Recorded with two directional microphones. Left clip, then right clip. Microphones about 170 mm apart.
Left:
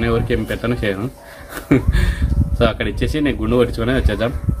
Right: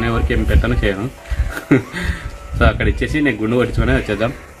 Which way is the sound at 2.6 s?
25° left (ahead or behind).